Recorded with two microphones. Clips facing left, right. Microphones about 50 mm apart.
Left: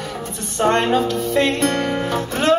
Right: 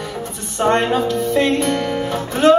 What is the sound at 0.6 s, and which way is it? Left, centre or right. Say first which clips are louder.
Speech: right 1 dB; centre.